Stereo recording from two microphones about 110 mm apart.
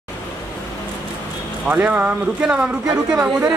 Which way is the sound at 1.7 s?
15° right (ahead or behind).